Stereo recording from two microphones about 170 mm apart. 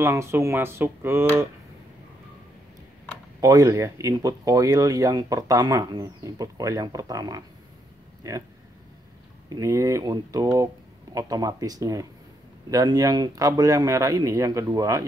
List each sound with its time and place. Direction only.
0.0 s speech: 15° right (ahead or behind)
3.3 s speech: 20° right (ahead or behind)
9.5 s speech: 20° right (ahead or behind)